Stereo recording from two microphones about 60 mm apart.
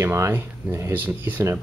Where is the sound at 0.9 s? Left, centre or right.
Right.